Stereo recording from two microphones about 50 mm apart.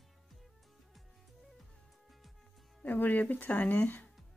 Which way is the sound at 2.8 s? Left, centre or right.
Left.